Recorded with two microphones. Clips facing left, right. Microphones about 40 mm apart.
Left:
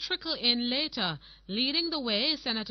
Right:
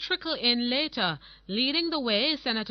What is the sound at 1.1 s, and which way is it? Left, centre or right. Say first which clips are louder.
Speech: right 3 dB; centre.